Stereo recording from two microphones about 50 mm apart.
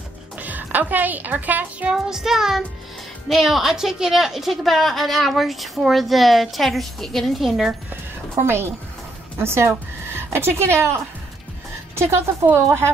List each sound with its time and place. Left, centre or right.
0.4 s speech: right
1.9 s child singing: centre
3.3 s a woman's voice: centre
7.9 s music: right
9.4 s speech: right
12.5 s a woman's voice: right